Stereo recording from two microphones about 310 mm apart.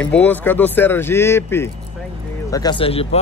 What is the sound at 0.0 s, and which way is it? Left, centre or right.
Speech, centre.